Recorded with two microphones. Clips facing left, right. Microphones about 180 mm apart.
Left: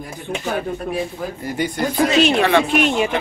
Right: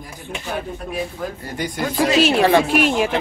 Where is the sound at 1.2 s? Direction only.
10° left (ahead or behind).